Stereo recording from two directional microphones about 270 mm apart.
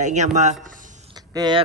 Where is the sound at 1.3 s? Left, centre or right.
Centre.